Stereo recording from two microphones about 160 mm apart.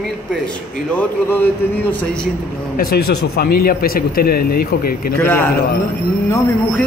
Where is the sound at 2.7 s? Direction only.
70° left (ahead or behind).